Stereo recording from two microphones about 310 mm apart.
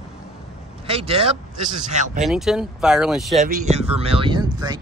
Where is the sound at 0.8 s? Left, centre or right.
Centre.